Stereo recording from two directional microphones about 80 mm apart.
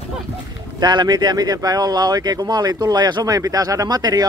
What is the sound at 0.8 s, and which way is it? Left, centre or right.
Speech, right.